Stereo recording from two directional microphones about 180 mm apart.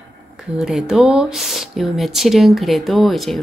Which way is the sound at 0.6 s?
Centre (ahead or behind).